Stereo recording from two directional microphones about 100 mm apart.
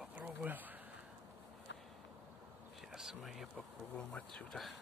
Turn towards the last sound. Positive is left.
turn(degrees=5)  # may be behind; listen again after turning